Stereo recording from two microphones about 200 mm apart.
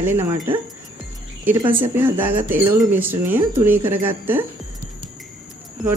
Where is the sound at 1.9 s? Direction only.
10° right (ahead or behind).